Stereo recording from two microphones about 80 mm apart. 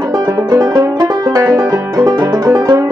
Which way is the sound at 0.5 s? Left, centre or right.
Right.